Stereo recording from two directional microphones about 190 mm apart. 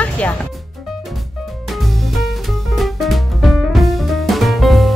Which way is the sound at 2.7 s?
Centre (ahead or behind).